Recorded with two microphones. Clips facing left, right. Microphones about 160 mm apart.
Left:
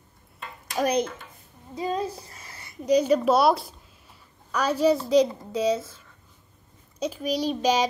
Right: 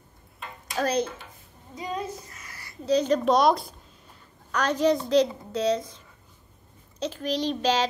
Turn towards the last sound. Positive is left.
turn(degrees=10)  # may be behind; listen again after turning